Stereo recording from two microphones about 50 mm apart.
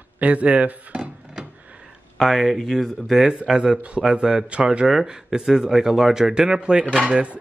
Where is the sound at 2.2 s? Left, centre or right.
Centre.